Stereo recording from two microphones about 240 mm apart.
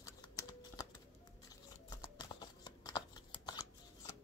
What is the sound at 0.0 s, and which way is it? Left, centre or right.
Typing, centre.